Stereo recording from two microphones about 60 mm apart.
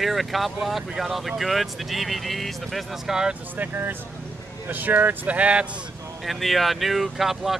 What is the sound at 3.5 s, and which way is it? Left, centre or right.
Speech, right.